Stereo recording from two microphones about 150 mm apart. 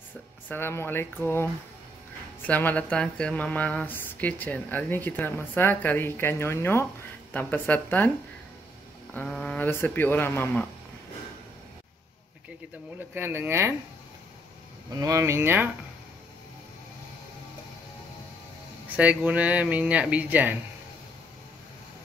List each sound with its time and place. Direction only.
0.5 s speech: 15° left (ahead or behind)
9.1 s speech: 10° left (ahead or behind)
13.1 s speech: 15° right (ahead or behind)
14.9 s speech: 25° right (ahead or behind)
18.9 s speech: 10° right (ahead or behind)